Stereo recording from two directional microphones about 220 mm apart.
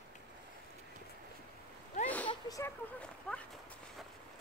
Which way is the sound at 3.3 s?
5° left (ahead or behind).